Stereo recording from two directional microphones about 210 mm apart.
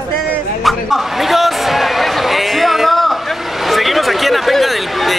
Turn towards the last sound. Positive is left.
turn(degrees=0)  # may be behind; listen again after turning